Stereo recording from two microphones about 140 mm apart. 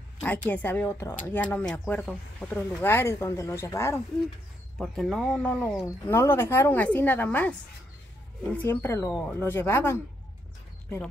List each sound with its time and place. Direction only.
0.2 s speech: 10° left (ahead or behind)
4.7 s speech: centre (ahead or behind)
8.5 s speech: 15° left (ahead or behind)